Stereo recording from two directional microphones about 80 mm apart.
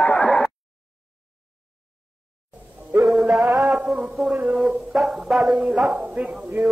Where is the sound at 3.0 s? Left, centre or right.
Centre.